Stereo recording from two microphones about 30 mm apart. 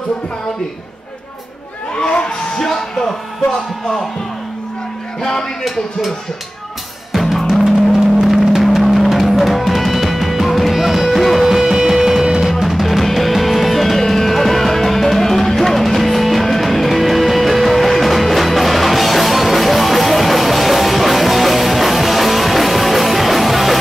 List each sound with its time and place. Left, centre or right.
2.0 s crowd: left
2.6 s music: centre
5.6 s speech: centre
7.1 s drum: centre
7.6 s vehicle: centre
8.7 s music: centre
10.7 s music: centre
11.4 s music: centre